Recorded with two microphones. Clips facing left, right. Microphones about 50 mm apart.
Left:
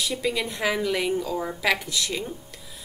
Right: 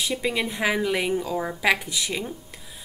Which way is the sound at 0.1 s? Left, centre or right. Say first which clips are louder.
Right 1 dB; centre.